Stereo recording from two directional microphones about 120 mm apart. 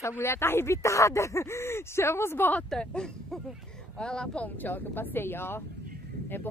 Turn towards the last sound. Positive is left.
turn(degrees=20)  # may be behind; listen again after turning